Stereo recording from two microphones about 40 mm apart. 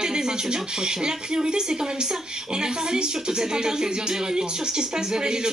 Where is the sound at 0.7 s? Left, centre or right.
Centre.